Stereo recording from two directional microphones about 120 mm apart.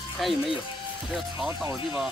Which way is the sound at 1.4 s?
20° right (ahead or behind).